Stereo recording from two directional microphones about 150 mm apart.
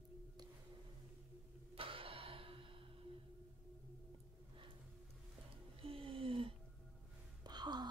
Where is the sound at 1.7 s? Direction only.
35° right (ahead or behind).